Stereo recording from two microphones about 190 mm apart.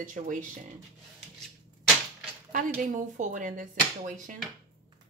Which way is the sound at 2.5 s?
40° right (ahead or behind).